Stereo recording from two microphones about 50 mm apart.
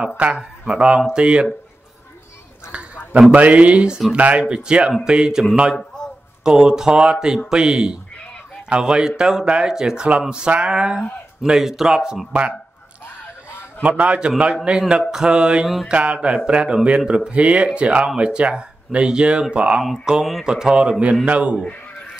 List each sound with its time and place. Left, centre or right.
0.2 s speech: centre
3.1 s speech: right
6.4 s speech: centre
12.3 s speech: right
13.8 s speech: right
15.6 s mantra: centre
15.9 s speech: right